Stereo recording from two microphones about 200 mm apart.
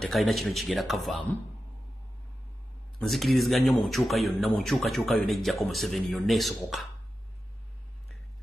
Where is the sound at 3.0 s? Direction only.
Centre (ahead or behind).